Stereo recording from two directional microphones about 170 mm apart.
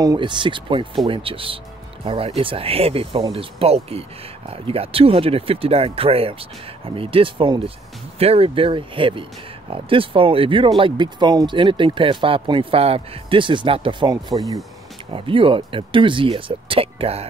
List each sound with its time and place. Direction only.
0.0 s speech: 25° right (ahead or behind)